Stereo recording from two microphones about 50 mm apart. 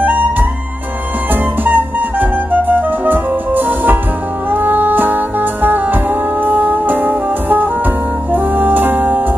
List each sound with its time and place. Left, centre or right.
0.0 s music: right